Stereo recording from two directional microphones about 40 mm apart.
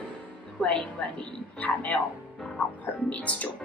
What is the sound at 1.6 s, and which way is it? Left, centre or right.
Speech, left.